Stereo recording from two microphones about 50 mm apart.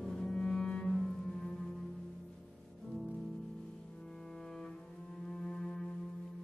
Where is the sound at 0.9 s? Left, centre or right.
Centre.